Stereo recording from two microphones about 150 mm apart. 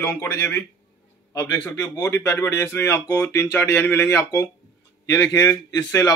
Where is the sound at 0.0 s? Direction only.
15° left (ahead or behind).